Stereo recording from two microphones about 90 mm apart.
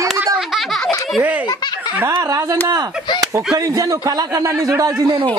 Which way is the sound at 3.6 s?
40° right (ahead or behind).